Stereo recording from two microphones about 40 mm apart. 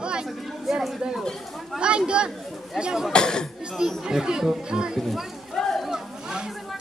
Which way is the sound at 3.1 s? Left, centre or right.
Centre.